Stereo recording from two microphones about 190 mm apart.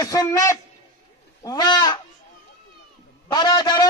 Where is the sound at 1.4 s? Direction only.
20° left (ahead or behind).